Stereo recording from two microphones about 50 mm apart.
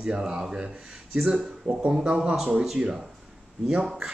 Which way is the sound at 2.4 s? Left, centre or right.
Centre.